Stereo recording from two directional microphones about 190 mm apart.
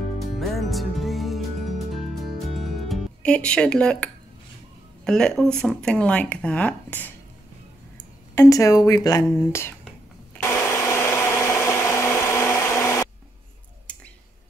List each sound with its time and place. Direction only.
0.3 s music: centre (ahead or behind)
5.0 s speech: 5° left (ahead or behind)
8.4 s speech: 15° left (ahead or behind)
10.3 s a sound: 10° left (ahead or behind)